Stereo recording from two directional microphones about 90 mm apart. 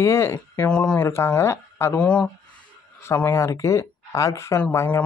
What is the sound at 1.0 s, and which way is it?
Speech, 25° left (ahead or behind).